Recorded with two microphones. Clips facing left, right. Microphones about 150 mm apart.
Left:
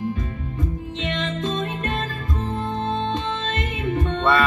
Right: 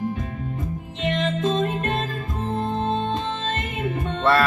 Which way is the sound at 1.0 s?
45° right (ahead or behind).